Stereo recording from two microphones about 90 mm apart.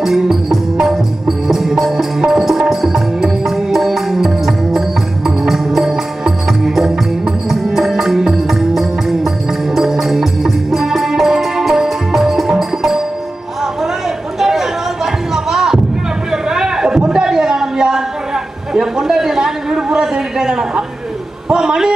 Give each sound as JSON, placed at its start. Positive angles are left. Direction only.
{"t": 0.0, "sound": "music", "side_deg": -5}
{"t": 14.4, "sound": "chatter", "side_deg": -5}
{"t": 15.3, "sound": "heart sounds", "side_deg": -5}
{"t": 16.3, "sound": "a sound", "side_deg": -5}